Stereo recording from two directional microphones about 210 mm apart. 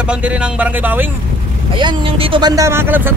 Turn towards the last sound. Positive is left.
turn(degrees=-10)  # may be behind; listen again after turning